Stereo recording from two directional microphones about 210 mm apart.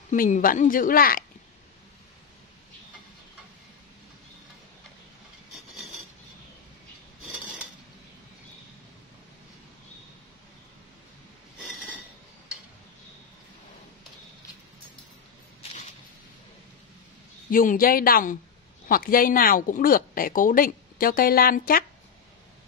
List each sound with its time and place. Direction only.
0.1 s a woman's voice: 40° left (ahead or behind)
17.5 s speech: 40° left (ahead or behind)